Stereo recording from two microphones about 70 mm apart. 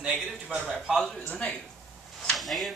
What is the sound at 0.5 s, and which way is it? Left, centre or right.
Speech, centre.